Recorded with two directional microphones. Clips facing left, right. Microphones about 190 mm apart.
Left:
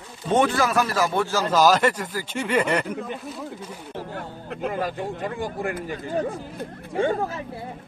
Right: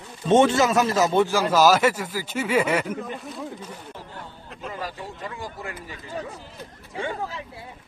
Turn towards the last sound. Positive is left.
turn(degrees=50)  # may be behind; listen again after turning